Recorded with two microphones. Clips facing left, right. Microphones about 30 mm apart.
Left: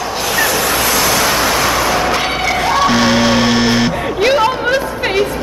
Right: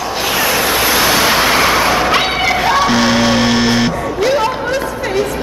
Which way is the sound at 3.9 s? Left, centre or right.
Left.